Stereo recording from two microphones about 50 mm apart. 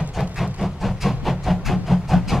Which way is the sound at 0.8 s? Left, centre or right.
Centre.